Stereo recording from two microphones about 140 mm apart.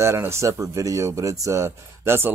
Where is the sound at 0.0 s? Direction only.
20° right (ahead or behind).